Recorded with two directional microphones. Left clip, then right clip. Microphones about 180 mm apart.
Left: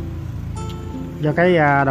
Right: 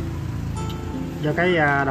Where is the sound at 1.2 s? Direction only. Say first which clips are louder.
Left 4 dB; 55° left (ahead or behind).